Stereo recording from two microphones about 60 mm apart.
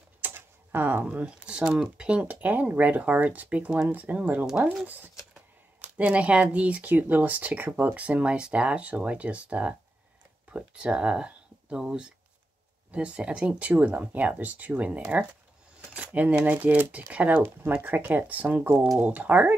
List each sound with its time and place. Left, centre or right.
0.3 s typewriter: right
1.0 s speech: right